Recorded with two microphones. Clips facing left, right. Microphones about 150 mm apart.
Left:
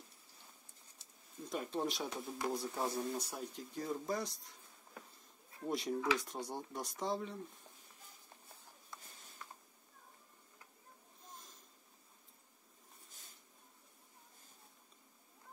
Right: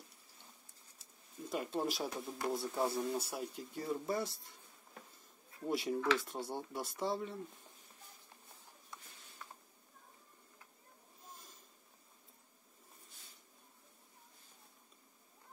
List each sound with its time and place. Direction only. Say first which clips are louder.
1.5 s speech: right 1 dB; centre (ahead or behind)
5.7 s speech: right 2 dB; 5° right (ahead or behind)
13.1 s a sound: even; 45° left (ahead or behind)